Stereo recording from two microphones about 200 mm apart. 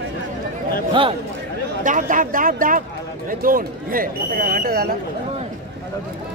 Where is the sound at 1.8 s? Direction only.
40° right (ahead or behind).